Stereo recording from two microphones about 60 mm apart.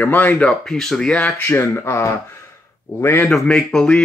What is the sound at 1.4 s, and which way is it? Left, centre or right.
Speech, left.